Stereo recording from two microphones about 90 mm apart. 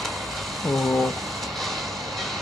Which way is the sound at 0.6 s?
Centre (ahead or behind).